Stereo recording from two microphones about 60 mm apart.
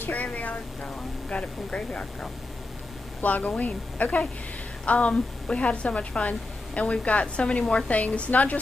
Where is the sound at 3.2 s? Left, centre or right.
Left.